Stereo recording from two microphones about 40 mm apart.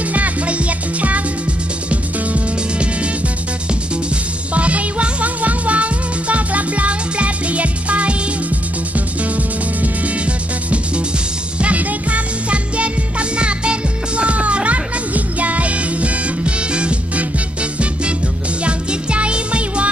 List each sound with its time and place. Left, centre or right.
0.1 s music: right
4.6 s music: right
11.6 s music: right
18.6 s music: right